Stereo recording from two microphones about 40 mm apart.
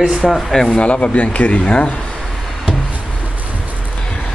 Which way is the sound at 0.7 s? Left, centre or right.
Left.